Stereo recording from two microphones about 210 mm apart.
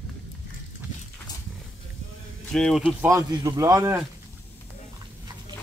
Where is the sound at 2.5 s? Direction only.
Centre (ahead or behind).